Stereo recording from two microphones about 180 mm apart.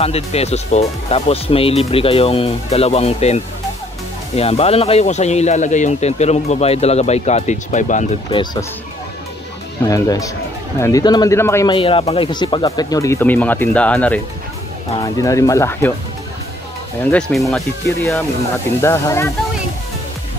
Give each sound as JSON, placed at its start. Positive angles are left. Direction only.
{"t": 0.0, "sound": "speech", "side_deg": 35}
{"t": 8.3, "sound": "speech", "side_deg": 25}
{"t": 9.8, "sound": "speech", "side_deg": 20}
{"t": 11.7, "sound": "speech", "side_deg": 30}
{"t": 15.0, "sound": "speech", "side_deg": 20}
{"t": 17.1, "sound": "speech", "side_deg": 0}
{"t": 18.8, "sound": "speech", "side_deg": 15}